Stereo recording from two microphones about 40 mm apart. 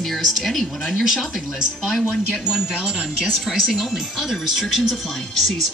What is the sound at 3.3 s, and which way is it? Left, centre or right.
Speech, centre.